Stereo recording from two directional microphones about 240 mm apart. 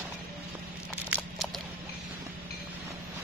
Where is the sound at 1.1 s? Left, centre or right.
Centre.